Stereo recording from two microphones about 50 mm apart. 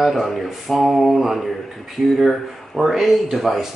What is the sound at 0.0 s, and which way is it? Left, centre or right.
Speech, centre.